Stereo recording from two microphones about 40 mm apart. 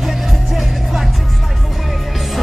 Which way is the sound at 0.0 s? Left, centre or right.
Centre.